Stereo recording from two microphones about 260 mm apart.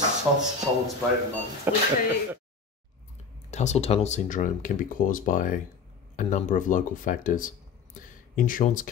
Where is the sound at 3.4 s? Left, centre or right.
Left.